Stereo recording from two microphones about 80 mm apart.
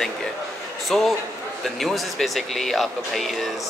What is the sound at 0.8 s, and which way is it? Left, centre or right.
A man's voice, centre.